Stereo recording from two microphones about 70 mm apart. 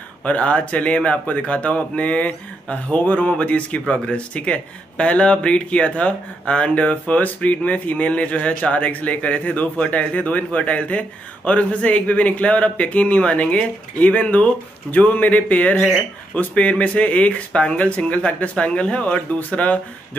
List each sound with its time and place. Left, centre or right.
0.2 s speech: centre